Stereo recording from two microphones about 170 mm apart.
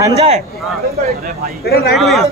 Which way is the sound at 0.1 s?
35° right (ahead or behind).